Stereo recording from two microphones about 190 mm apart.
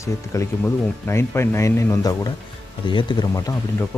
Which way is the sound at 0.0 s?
15° left (ahead or behind).